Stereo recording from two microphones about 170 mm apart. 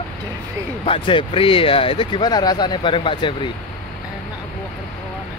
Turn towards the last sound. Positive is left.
turn(degrees=30)  # may be behind; listen again after turning